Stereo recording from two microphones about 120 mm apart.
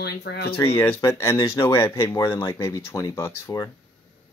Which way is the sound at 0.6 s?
20° left (ahead or behind).